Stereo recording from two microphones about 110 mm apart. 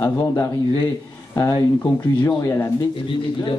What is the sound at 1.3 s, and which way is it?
A man's voice, 30° left (ahead or behind).